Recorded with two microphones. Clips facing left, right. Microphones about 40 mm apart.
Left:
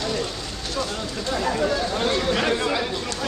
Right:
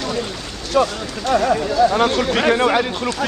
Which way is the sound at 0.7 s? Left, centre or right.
Right.